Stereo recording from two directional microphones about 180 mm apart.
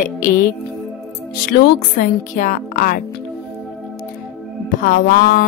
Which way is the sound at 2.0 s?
45° left (ahead or behind).